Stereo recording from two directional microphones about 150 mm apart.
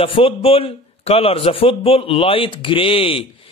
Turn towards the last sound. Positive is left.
turn(degrees=40)  # may be behind; listen again after turning